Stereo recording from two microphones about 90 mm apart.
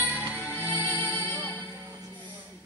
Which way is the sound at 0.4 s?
20° left (ahead or behind).